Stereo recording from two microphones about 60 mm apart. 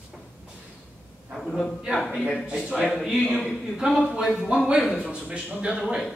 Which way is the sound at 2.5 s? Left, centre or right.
Centre.